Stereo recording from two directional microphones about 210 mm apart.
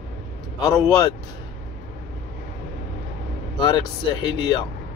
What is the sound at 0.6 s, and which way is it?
Speech, 15° left (ahead or behind).